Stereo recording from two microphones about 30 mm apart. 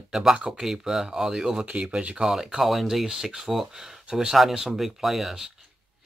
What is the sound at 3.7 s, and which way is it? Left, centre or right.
Speech, centre.